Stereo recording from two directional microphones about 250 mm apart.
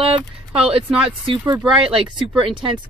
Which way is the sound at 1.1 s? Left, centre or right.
Centre.